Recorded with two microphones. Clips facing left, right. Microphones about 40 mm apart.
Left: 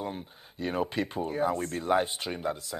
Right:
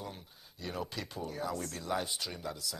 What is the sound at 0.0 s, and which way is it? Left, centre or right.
Speech, left.